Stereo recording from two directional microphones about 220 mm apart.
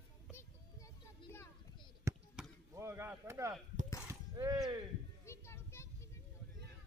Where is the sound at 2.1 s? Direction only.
15° right (ahead or behind).